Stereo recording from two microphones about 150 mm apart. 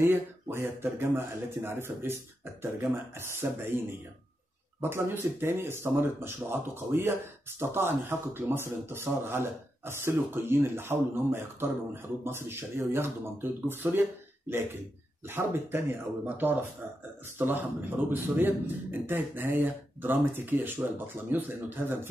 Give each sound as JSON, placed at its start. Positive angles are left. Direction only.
{"t": 0.0, "sound": "speech", "side_deg": -15}
{"t": 15.2, "sound": "speech", "side_deg": -15}